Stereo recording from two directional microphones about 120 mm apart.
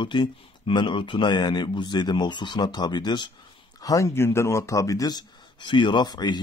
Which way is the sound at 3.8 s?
25° left (ahead or behind).